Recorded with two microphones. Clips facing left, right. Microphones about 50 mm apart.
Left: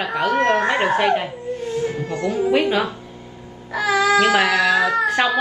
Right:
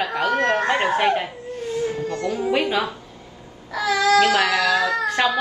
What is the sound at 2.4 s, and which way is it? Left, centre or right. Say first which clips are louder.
Speech: left 3 dB; centre.